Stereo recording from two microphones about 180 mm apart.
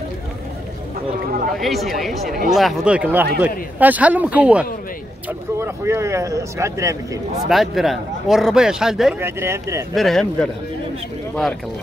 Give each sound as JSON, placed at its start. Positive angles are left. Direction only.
{"t": 1.6, "sound": "speech", "side_deg": 0}
{"t": 7.4, "sound": "speech", "side_deg": 0}
{"t": 9.2, "sound": "speech", "side_deg": -15}
{"t": 9.9, "sound": "speech", "side_deg": 0}